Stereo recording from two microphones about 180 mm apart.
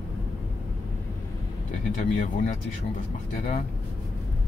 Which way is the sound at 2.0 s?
45° left (ahead or behind).